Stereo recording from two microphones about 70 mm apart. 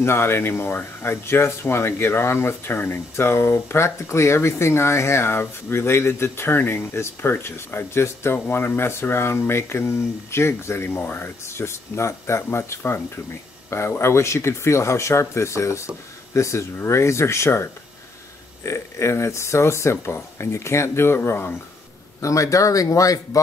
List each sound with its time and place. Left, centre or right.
0.0 s speech: left
22.2 s speech: left